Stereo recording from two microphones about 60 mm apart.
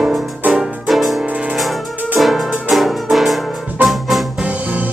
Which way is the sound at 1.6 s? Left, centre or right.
Centre.